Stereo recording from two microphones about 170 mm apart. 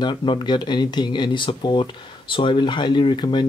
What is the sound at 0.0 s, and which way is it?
Speech, 30° left (ahead or behind).